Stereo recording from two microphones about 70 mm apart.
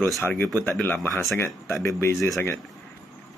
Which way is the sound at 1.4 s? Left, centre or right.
Left.